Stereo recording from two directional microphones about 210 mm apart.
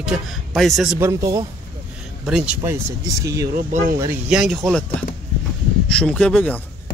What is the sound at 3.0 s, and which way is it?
Speech, 15° right (ahead or behind).